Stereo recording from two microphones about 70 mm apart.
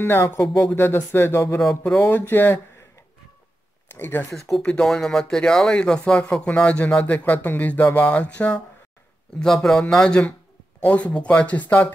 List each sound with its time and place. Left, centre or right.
0.0 s speech: left
3.9 s speech: left
4.3 s speech: centre; by 11.9 s left